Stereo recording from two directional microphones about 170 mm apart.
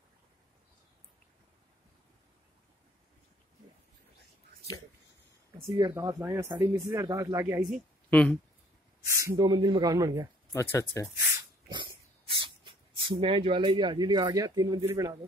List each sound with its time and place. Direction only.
5.8 s speech: 20° right (ahead or behind)
8.1 s speech: 10° left (ahead or behind)
9.0 s speech: 20° right (ahead or behind)
10.5 s speech: 15° left (ahead or behind)
11.7 s speech: 30° right (ahead or behind)